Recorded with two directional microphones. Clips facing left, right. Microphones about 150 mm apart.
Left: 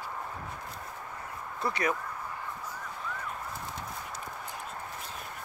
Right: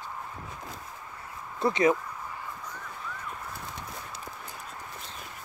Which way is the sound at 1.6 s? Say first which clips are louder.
Right 7 dB; 25° right (ahead or behind).